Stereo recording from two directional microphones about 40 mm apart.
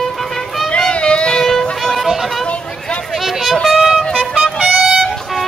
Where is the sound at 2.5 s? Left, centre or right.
Left.